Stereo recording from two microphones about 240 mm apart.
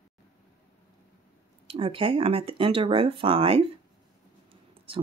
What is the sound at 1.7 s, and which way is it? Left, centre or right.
Speech, right.